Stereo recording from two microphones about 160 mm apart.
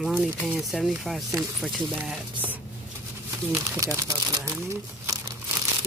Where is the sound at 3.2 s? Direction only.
20° right (ahead or behind).